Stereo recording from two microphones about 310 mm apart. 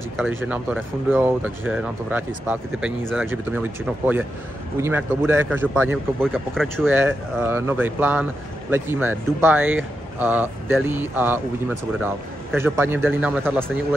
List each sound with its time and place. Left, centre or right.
0.4 s speech: centre